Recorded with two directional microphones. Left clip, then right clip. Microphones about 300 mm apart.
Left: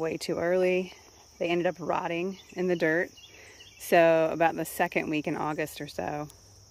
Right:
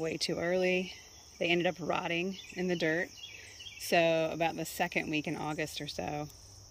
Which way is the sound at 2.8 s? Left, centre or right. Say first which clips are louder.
Left 5 dB; left.